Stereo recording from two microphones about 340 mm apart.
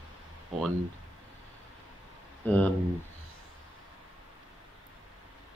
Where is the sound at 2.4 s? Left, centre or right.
Centre.